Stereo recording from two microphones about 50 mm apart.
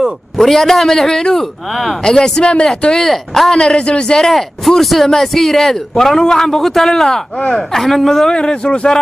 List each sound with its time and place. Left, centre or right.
0.4 s a man's voice: centre
3.5 s a man's voice: centre
7.3 s speech: left
7.7 s a man's voice: centre